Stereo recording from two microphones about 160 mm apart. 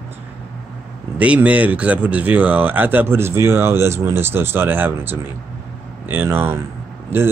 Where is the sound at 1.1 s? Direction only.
10° right (ahead or behind).